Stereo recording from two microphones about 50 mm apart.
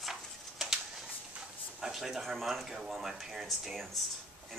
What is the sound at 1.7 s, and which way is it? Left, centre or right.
Speech, centre.